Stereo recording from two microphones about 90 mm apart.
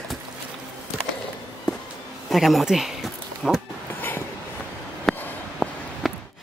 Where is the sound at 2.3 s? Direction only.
Centre (ahead or behind).